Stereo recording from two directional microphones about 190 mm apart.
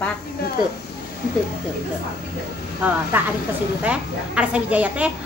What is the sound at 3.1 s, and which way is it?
Speech, 10° right (ahead or behind).